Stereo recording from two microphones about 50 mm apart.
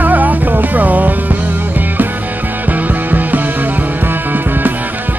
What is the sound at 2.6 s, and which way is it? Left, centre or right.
Music, right.